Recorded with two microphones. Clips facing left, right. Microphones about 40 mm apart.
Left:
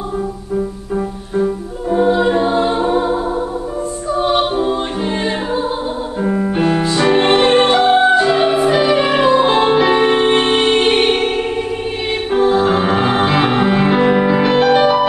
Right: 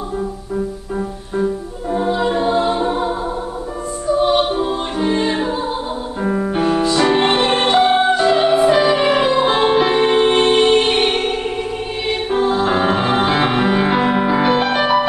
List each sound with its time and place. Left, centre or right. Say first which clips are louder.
0.9 s music: left 4 dB; centre
4.2 s music: left 1 dB; centre